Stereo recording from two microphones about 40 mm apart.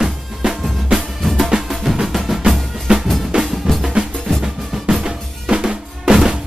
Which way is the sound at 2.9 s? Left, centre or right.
Right.